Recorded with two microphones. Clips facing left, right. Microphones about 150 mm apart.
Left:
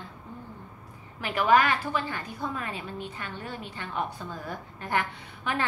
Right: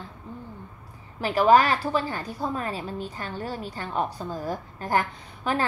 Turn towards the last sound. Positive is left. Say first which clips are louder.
# right 4 dB
turn(degrees=-35)  # may be behind; listen again after turning